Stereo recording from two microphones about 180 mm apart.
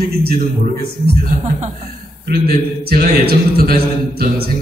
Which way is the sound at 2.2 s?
55° right (ahead or behind).